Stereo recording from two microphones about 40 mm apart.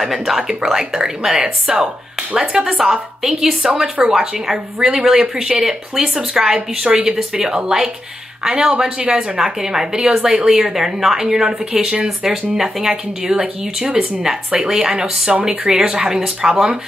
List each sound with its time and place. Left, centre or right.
0.1 s speech: centre; by 1.9 s right
2.6 s speech: centre